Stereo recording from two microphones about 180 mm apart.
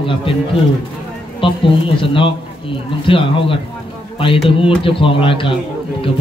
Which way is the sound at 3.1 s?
30° left (ahead or behind).